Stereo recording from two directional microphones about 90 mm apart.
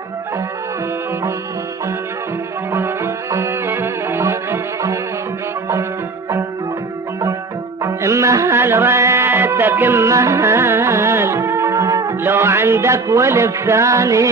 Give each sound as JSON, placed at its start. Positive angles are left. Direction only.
{"t": 2.7, "sound": "music", "side_deg": -30}
{"t": 7.8, "sound": "music", "side_deg": -35}
{"t": 12.2, "sound": "music", "side_deg": -25}